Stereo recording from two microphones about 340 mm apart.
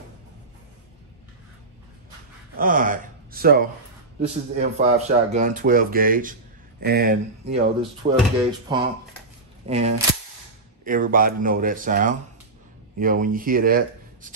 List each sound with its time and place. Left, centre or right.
2.5 s speech: right